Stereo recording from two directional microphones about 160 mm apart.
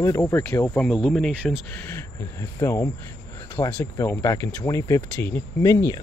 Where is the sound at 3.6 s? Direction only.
30° left (ahead or behind).